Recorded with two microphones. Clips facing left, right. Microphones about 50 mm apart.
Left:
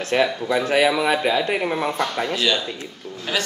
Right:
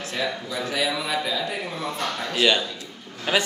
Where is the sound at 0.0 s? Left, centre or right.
Left.